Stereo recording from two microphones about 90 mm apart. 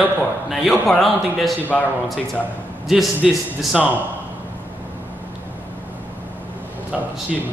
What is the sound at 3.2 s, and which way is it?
Speech, 5° right (ahead or behind).